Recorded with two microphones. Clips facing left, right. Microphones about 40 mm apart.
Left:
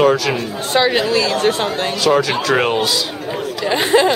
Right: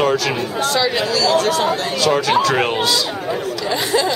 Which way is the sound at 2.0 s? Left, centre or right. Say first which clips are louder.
Even; centre.